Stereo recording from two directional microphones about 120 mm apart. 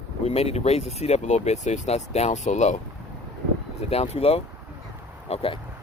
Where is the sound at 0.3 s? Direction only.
60° left (ahead or behind); by 2.8 s 80° left.